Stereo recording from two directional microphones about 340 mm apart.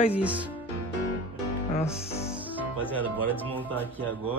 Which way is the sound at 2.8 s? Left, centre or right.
Centre.